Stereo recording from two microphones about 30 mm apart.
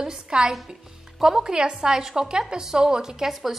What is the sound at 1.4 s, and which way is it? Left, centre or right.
A woman's voice, right.